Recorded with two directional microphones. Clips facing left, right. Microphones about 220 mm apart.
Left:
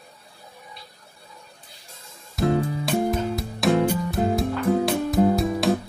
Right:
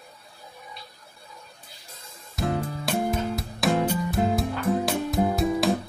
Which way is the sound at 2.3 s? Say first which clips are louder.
Left 6 dB; centre (ahead or behind).